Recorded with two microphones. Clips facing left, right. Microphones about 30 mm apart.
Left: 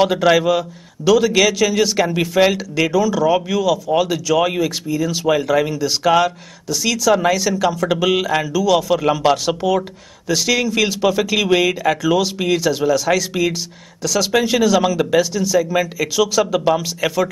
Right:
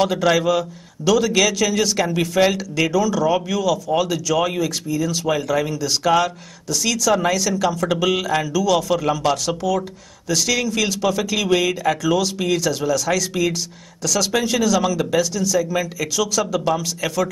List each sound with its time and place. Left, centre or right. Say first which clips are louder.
0.0 s a man's voice: left 3 dB; centre